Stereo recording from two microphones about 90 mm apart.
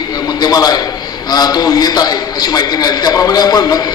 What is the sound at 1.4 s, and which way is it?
A man's voice, 45° left (ahead or behind).